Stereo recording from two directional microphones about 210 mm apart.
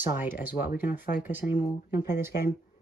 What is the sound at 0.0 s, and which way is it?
Speech, 10° right (ahead or behind).